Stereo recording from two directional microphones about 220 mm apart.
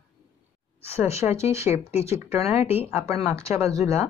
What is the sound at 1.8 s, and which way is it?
Speech, 30° left (ahead or behind).